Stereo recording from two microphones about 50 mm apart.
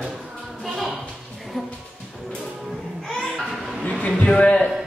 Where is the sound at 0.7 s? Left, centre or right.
Centre.